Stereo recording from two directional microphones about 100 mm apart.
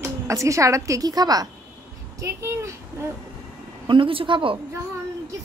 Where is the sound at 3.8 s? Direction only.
60° right (ahead or behind).